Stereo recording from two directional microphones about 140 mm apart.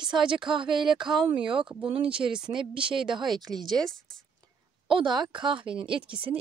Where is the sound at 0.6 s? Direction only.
35° right (ahead or behind).